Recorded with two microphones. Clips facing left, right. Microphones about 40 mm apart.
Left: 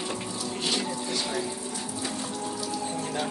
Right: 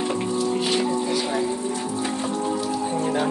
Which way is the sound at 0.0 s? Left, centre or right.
Right.